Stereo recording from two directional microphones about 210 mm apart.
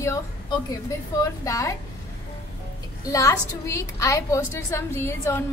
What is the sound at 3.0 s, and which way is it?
A woman's voice, 15° left (ahead or behind).